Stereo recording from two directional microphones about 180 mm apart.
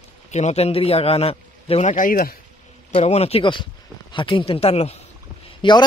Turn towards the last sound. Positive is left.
turn(degrees=25)  # may be behind; listen again after turning